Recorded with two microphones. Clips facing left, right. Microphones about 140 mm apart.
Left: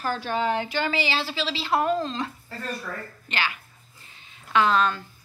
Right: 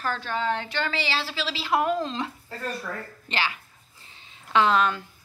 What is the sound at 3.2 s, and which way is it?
Speech, 30° right (ahead or behind).